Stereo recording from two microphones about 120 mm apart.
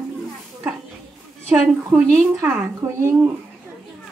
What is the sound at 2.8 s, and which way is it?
Speech, 20° right (ahead or behind).